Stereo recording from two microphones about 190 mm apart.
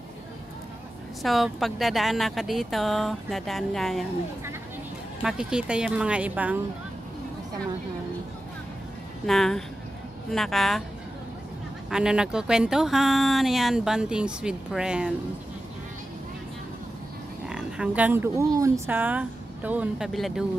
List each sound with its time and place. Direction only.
1.2 s speech: centre (ahead or behind)
5.2 s speech: 5° right (ahead or behind)
9.2 s speech: centre (ahead or behind)
11.9 s speech: 5° right (ahead or behind)
17.5 s speech: 5° right (ahead or behind)